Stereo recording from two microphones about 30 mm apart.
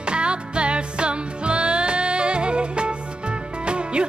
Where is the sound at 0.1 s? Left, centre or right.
Right.